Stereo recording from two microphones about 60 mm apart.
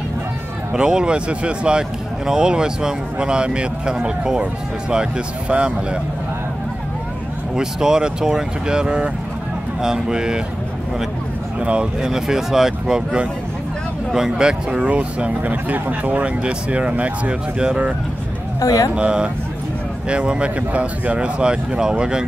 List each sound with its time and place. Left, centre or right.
0.7 s speech: centre
7.5 s speech: centre
11.6 s speech: centre
18.6 s speech: left
18.9 s speech: centre